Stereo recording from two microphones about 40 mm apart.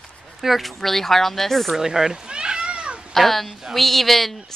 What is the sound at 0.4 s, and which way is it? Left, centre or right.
A woman's voice, centre.